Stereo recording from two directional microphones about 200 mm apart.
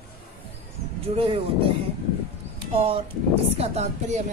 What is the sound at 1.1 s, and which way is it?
Speech, 25° right (ahead or behind).